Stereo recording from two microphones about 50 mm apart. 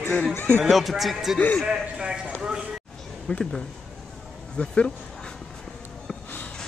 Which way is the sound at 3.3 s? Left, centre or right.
Left.